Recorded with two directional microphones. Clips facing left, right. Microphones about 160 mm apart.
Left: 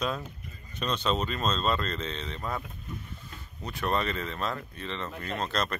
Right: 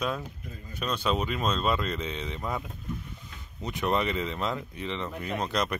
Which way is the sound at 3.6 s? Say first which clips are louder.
Right 2 dB; 15° right (ahead or behind).